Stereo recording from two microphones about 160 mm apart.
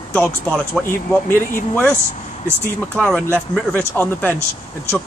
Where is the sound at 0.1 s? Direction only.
10° left (ahead or behind).